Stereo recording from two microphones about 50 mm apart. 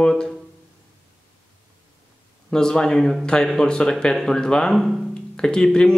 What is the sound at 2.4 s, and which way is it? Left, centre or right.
A man's voice, centre.